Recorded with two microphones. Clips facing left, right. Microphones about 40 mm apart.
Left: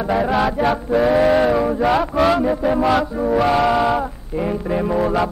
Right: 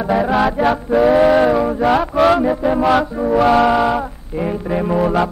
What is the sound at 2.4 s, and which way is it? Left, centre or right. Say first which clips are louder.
Mantra: right 2 dB; centre.